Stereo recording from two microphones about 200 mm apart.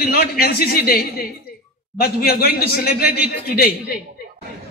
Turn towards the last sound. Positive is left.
turn(degrees=50)  # may be behind; listen again after turning